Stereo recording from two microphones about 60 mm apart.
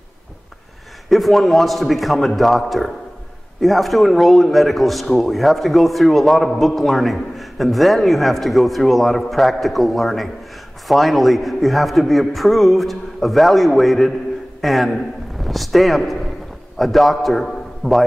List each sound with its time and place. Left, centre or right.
1.1 s a man's voice: centre